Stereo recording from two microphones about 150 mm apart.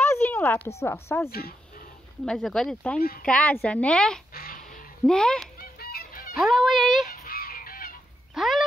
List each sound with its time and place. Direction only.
0.0 s a woman's voice: 15° left (ahead or behind)
2.2 s speech: centre (ahead or behind)
3.0 s speech: 85° left
3.3 s a woman's voice: 10° left (ahead or behind)
4.3 s duck: 75° left (ahead or behind)
5.0 s speech: 5° left (ahead or behind)
5.6 s honk: 90° left
6.3 s music: centre (ahead or behind)
7.1 s goose: 90° left; by 7.9 s 75° left (ahead or behind)
8.4 s a sound: centre (ahead or behind)